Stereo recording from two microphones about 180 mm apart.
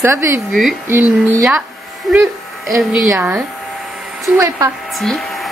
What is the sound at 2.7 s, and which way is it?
Speech, centre (ahead or behind).